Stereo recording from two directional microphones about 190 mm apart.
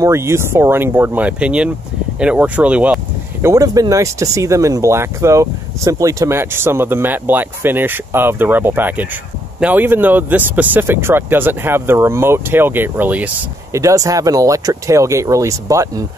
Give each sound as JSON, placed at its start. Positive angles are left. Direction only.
{"t": 0.0, "sound": "speech", "side_deg": -15}
{"t": 3.4, "sound": "speech", "side_deg": -20}